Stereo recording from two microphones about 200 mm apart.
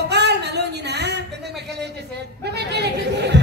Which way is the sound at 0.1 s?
55° right (ahead or behind).